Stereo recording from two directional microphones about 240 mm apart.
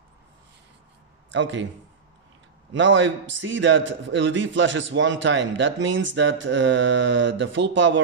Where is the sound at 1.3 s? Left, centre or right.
Right.